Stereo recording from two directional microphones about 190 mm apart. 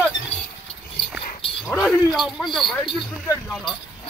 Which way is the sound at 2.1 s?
Centre (ahead or behind).